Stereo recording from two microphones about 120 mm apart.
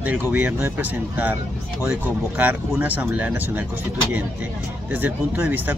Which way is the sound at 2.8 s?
15° right (ahead or behind).